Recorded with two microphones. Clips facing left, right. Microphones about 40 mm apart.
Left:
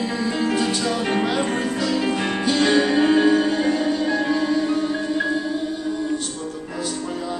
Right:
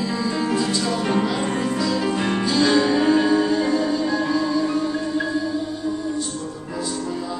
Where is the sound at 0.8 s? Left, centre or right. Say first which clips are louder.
Even; left.